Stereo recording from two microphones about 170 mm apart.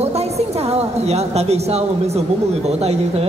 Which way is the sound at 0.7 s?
40° right (ahead or behind).